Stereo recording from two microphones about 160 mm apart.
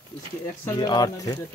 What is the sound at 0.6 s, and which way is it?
Speech, 25° left (ahead or behind).